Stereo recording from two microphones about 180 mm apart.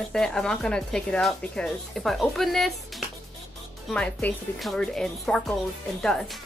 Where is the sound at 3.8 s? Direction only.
5° left (ahead or behind).